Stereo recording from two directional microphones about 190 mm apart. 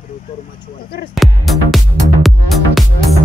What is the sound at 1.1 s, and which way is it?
Speech, centre (ahead or behind).